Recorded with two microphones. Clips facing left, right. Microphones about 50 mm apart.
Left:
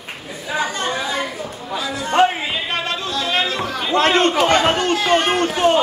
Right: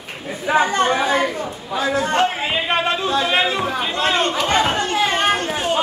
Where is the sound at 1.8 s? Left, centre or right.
Right.